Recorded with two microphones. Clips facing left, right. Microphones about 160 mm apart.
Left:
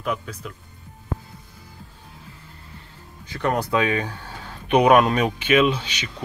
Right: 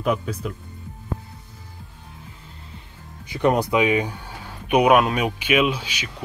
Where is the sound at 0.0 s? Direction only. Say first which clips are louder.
Right 5 dB; 20° right (ahead or behind).